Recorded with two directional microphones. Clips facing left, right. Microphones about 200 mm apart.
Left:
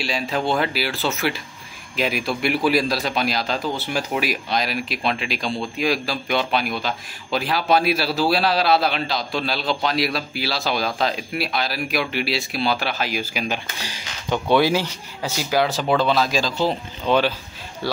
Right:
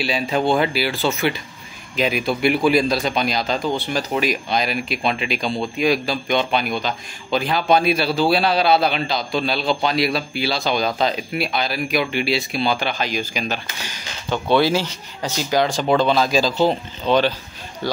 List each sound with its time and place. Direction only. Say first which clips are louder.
0.0 s a man's voice: right 3 dB; centre (ahead or behind)